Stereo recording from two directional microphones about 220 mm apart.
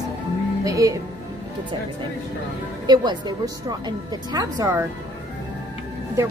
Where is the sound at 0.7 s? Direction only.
15° right (ahead or behind).